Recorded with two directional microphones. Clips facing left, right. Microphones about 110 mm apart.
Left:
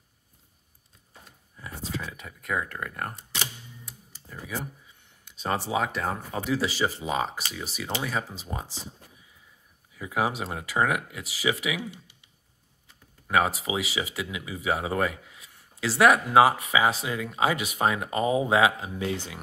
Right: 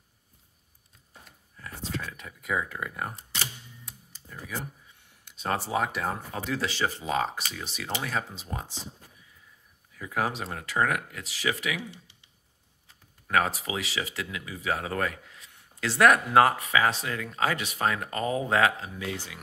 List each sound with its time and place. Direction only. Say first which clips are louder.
1.6 s speech: left 1 dB; 5° left (ahead or behind)
4.3 s speech: left 2 dB; centre (ahead or behind)
9.9 s speech: left 2 dB; 10° left (ahead or behind)
13.3 s speech: left 2 dB; 10° left (ahead or behind)
18.9 s speech: left 5 dB; 25° left (ahead or behind)